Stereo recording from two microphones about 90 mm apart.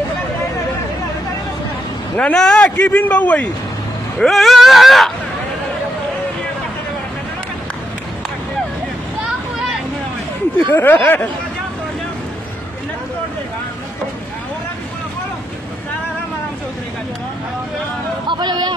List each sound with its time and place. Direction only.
2.1 s a man's voice: 10° left (ahead or behind)
2.8 s a man's voice: 20° left (ahead or behind)
4.2 s speech: centre (ahead or behind)
10.7 s speech: 25° left (ahead or behind)
18.2 s a sound: 55° right (ahead or behind)